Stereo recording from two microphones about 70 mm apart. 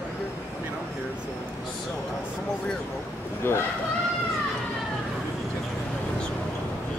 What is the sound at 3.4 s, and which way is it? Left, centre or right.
Speech, left.